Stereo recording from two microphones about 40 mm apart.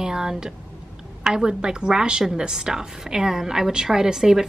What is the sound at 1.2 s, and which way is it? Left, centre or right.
A woman's voice, centre.